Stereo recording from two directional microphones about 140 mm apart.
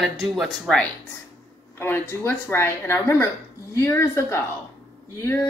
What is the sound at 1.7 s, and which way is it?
Speech, 15° left (ahead or behind).